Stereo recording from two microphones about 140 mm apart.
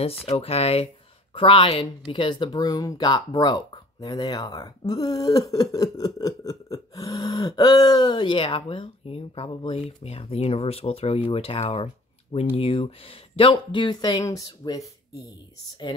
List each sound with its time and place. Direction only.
0.0 s speech: 45° left (ahead or behind); by 14.9 s 25° left (ahead or behind)